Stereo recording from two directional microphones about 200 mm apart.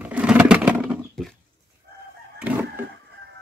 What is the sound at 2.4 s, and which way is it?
Chicken, 10° right (ahead or behind).